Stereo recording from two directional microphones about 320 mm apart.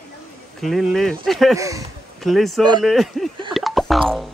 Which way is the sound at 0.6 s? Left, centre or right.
Centre.